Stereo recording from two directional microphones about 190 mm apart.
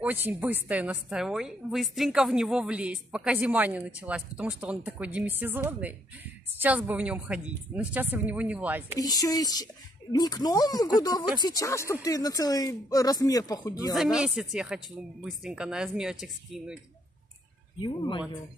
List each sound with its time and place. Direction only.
0.0 s a woman's voice: 10° right (ahead or behind)
9.0 s speech: 20° left (ahead or behind)
13.9 s speech: centre (ahead or behind)
17.7 s speech: 25° left (ahead or behind)